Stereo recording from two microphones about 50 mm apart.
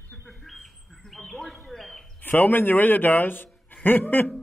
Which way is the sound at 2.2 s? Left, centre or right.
Left.